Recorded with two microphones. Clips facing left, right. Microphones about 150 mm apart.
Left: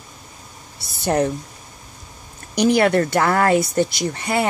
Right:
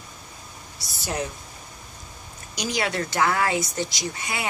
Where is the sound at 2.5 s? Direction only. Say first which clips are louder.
Left 11 dB; 60° left (ahead or behind).